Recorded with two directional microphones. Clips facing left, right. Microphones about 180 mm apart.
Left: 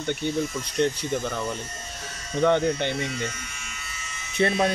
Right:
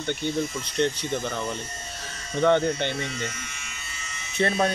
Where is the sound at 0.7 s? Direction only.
5° left (ahead or behind).